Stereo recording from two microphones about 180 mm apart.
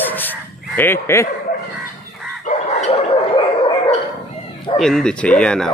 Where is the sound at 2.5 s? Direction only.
35° left (ahead or behind).